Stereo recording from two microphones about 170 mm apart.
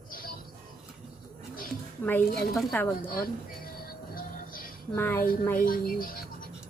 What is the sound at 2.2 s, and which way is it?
Speech, 65° left (ahead or behind).